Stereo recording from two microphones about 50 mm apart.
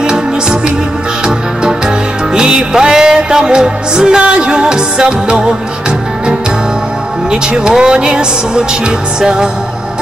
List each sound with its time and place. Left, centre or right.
0.0 s music: centre
7.2 s speech: centre